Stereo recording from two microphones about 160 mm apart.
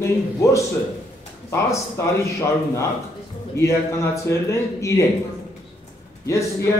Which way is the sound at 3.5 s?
15° left (ahead or behind).